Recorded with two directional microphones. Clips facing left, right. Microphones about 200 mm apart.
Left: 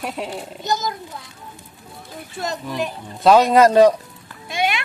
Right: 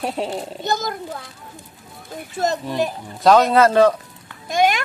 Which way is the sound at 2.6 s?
35° right (ahead or behind).